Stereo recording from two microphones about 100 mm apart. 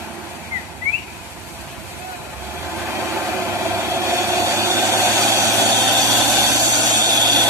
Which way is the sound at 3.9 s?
25° right (ahead or behind).